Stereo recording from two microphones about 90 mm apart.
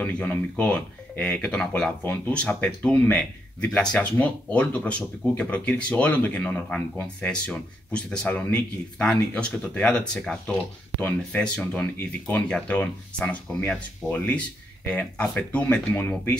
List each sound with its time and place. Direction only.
0.0 s speech: 15° left (ahead or behind)